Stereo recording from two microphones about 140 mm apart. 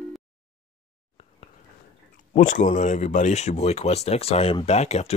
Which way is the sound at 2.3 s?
65° left (ahead or behind).